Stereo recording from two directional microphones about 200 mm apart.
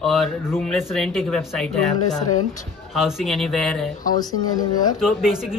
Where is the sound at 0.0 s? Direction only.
Centre (ahead or behind).